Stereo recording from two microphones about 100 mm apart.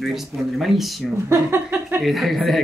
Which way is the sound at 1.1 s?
30° right (ahead or behind).